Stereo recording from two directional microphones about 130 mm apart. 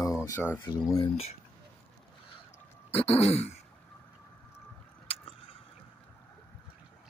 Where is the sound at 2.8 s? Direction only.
50° left (ahead or behind).